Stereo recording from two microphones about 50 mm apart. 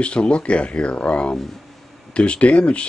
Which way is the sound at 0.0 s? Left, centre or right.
Left.